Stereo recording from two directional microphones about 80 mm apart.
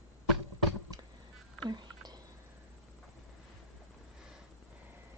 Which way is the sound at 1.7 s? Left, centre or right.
Right.